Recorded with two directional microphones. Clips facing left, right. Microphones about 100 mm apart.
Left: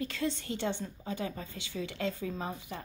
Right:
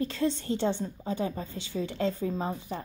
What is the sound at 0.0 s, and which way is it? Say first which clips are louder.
A woman's voice: right 5 dB; 35° right (ahead or behind).